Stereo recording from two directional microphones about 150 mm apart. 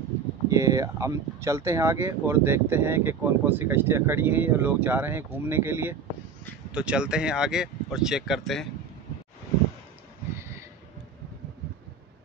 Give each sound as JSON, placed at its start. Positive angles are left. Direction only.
{"t": 0.5, "sound": "speech", "side_deg": -20}